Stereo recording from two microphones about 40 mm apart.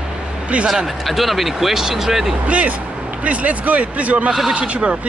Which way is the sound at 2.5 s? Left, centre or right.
Right.